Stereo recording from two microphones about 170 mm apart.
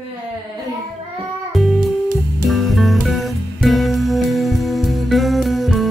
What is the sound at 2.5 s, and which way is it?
Music, centre (ahead or behind).